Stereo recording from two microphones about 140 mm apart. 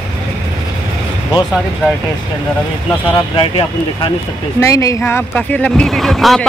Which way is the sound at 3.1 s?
35° left (ahead or behind).